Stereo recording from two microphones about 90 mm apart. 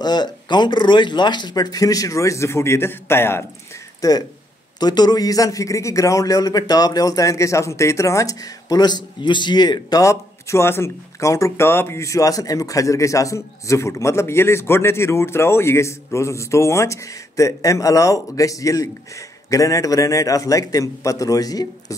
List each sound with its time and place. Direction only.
0.0 s a man's voice: 50° left (ahead or behind); by 3.4 s 25° left (ahead or behind)
4.0 s a man's voice: 40° left (ahead or behind)
10.0 s speech: 35° left (ahead or behind)